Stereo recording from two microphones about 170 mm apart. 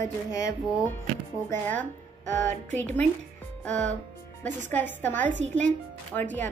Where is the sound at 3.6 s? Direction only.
5° left (ahead or behind).